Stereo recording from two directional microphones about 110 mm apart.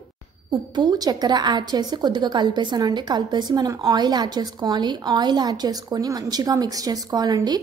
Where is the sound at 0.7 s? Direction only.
40° right (ahead or behind).